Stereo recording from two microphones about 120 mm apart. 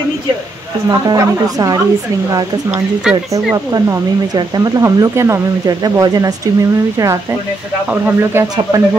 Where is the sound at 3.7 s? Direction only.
30° right (ahead or behind).